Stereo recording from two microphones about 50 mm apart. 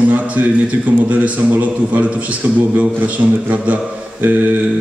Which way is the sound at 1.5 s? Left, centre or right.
Right.